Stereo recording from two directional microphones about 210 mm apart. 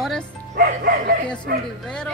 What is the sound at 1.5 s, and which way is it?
Speech, 45° right (ahead or behind).